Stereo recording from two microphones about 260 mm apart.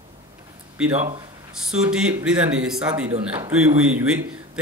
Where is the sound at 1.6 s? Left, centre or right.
Centre.